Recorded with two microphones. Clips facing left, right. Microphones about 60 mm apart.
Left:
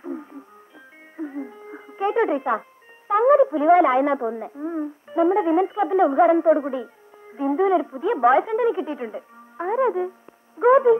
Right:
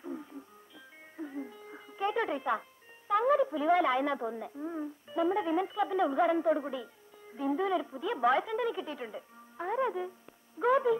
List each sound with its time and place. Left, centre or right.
0.0 s music: left
3.1 s a woman's voice: left